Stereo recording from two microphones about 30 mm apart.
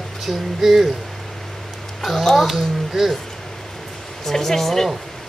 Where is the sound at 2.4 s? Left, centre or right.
Centre.